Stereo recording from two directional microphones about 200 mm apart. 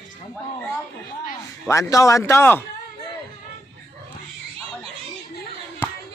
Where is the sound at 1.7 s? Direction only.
15° left (ahead or behind).